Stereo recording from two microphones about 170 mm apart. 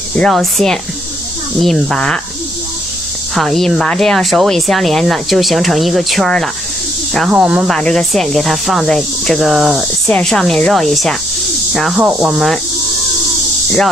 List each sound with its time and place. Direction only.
0.1 s speech: 5° left (ahead or behind)
3.3 s speech: centre (ahead or behind)